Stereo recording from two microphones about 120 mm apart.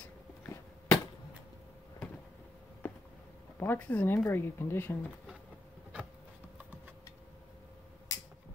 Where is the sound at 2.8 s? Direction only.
20° left (ahead or behind).